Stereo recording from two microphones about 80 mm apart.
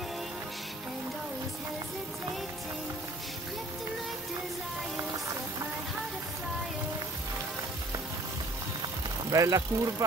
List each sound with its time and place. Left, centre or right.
9.3 s speech: right